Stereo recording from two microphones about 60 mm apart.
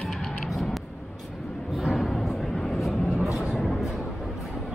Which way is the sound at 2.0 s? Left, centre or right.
Centre.